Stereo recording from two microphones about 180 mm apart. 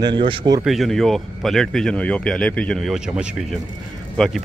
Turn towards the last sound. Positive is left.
turn(degrees=0)  # may be behind; listen again after turning